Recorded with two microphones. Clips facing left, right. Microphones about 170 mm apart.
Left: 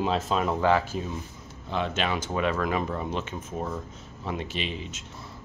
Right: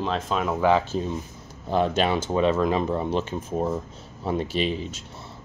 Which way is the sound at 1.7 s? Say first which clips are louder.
Right 6 dB; 40° right (ahead or behind).